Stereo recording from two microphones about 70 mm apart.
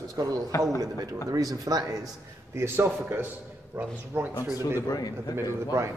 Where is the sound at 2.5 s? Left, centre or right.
Right.